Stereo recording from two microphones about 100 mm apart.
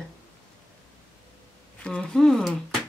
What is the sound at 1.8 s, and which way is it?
Speech, 5° left (ahead or behind).